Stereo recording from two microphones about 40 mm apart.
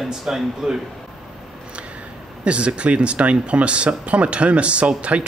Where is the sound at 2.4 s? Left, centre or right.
Right.